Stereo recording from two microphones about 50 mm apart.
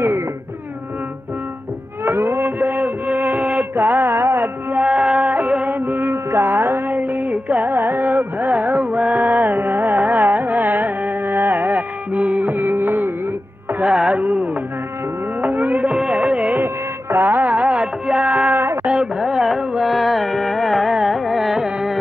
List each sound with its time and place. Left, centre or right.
2.0 s music: right
3.7 s a sound: right
4.7 s music: right
5.8 s music: right
7.0 s music: right
13.9 s music: centre
14.2 s music: right
15.9 s music: right
16.5 s music: right
18.9 s music: centre
19.8 s carnatic music: centre